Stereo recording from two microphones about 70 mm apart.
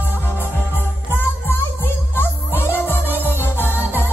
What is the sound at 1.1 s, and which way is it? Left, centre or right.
Music, left.